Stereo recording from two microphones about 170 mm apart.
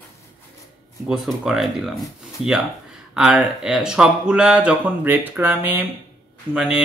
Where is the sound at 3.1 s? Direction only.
5° right (ahead or behind).